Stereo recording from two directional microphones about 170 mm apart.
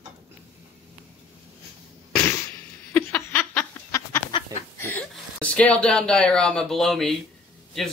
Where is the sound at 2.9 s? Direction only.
10° left (ahead or behind).